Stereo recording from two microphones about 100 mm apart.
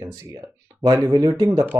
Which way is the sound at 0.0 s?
35° right (ahead or behind).